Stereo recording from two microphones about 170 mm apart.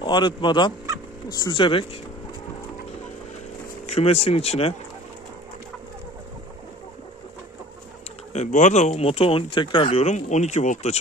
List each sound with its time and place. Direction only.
0.0 s speech: 25° left (ahead or behind)
3.8 s speech: 35° left (ahead or behind)
8.3 s speech: 45° left (ahead or behind)